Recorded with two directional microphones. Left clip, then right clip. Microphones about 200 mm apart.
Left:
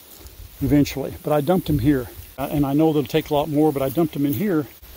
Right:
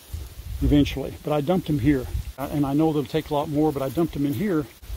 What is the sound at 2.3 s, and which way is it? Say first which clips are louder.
Speech: left 4 dB; 50° left (ahead or behind).